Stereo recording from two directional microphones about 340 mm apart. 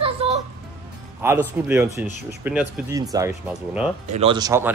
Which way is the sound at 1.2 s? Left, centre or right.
Centre.